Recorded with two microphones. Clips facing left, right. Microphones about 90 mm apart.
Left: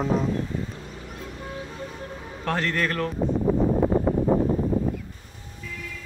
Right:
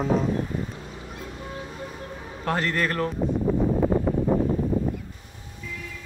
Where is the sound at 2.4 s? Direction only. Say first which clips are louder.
Even; 5° right (ahead or behind).